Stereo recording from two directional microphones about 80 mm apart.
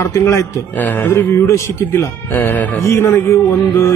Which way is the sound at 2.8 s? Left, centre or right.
Left.